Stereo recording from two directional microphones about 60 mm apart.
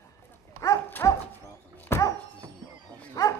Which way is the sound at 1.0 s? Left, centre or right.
Left.